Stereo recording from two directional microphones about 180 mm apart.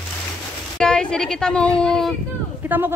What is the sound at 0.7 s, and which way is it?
Speech, 5° left (ahead or behind).